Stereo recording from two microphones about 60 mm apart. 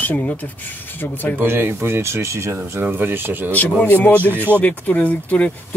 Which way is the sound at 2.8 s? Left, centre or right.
Right.